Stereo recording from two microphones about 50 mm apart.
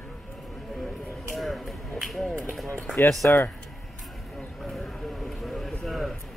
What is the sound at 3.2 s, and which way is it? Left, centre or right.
Speech, left.